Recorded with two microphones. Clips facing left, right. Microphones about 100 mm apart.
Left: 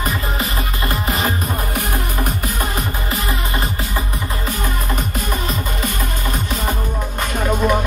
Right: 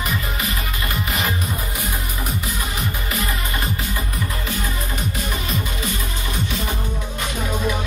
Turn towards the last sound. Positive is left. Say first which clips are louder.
# left 6 dB
turn(degrees=55)  # may be behind; listen again after turning